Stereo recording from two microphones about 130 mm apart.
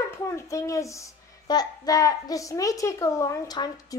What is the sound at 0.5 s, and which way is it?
A child's voice, 25° left (ahead or behind).